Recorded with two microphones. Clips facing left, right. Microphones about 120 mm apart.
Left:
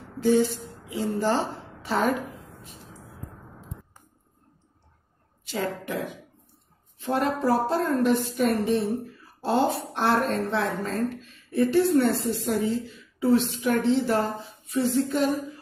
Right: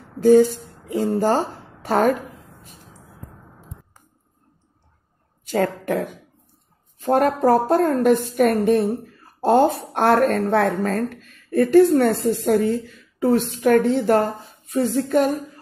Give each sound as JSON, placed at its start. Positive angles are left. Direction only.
{"t": 0.2, "sound": "a woman's voice", "side_deg": -45}
{"t": 5.4, "sound": "a woman's voice", "side_deg": -50}